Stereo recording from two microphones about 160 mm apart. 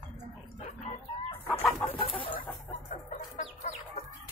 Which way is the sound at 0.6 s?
35° left (ahead or behind).